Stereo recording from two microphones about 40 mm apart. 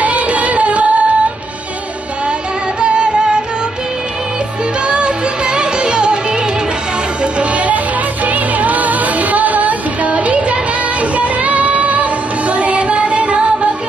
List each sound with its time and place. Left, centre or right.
0.0 s music: right
4.8 s music: right
7.3 s music: right